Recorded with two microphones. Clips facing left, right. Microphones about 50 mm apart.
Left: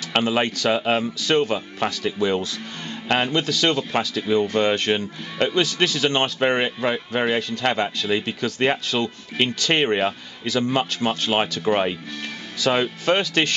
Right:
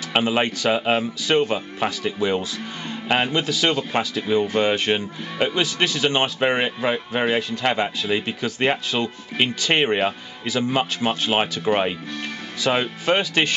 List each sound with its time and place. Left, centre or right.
0.1 s speech: centre